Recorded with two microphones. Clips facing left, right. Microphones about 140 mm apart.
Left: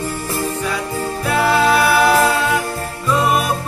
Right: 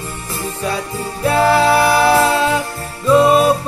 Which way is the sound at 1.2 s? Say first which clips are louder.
Right 3 dB; 30° right (ahead or behind).